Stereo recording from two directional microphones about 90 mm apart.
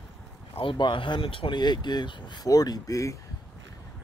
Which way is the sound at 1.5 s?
55° left (ahead or behind).